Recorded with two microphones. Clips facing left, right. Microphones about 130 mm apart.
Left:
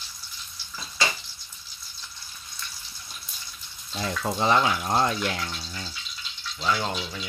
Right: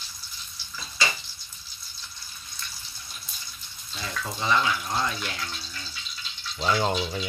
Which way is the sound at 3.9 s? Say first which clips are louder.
Left 6 dB; 50° left (ahead or behind).